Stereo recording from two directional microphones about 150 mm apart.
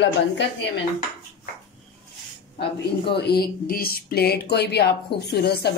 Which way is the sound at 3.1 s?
90° left.